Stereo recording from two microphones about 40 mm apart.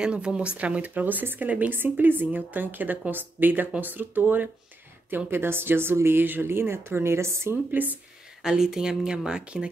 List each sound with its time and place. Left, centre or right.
0.0 s speech: right
1.7 s a woman's voice: right
5.1 s speech: right
6.4 s speech: right
7.8 s a woman's voice: right
8.4 s speech: centre